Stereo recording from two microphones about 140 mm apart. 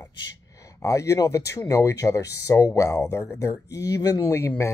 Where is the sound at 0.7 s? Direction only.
20° left (ahead or behind).